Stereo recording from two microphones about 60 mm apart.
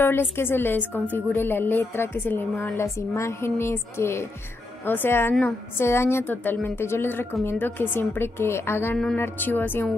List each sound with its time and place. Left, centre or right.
0.0 s a woman's voice: left
2.8 s speech: left
4.8 s a woman's voice: left